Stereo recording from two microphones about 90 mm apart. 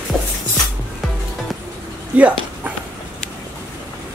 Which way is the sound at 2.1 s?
15° right (ahead or behind).